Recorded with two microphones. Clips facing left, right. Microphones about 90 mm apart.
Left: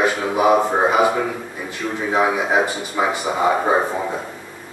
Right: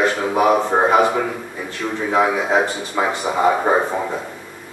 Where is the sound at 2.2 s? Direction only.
10° left (ahead or behind).